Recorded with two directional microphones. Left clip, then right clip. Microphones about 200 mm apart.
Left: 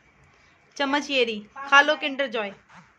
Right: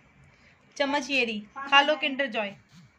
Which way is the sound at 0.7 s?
30° left (ahead or behind).